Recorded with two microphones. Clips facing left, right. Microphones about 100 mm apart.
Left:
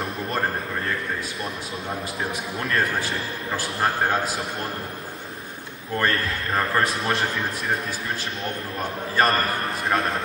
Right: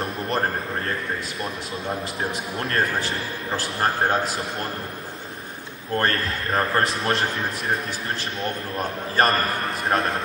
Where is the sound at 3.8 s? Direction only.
Centre (ahead or behind).